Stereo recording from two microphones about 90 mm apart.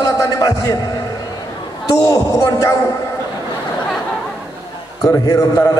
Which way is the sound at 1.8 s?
40° left (ahead or behind).